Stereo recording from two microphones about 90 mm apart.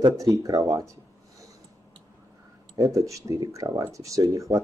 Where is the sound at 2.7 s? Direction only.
40° right (ahead or behind).